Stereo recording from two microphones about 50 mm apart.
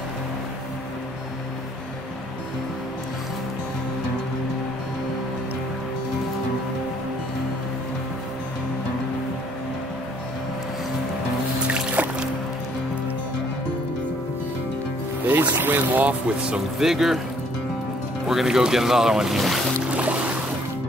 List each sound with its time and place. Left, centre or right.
11.6 s music: right
15.2 s music: right
16.3 s speech: centre
16.7 s speech: centre
18.3 s speech: centre
19.9 s boat: right